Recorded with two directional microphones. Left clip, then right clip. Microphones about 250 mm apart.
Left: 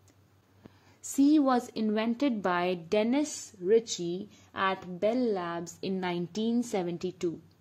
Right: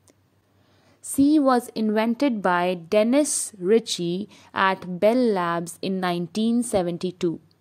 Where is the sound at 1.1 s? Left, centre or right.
Centre.